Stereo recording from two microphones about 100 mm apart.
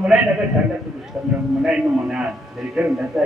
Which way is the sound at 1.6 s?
10° right (ahead or behind).